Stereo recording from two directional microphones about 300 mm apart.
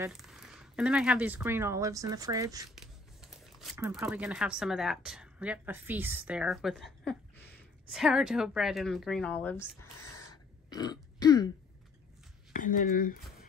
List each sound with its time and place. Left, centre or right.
0.0 s speech: centre
2.7 s a woman's voice: centre
10.1 s throat clearing: centre
12.5 s speech: left